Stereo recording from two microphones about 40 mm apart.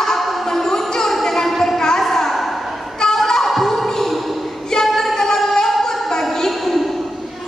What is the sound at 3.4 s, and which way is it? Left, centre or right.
Music, centre.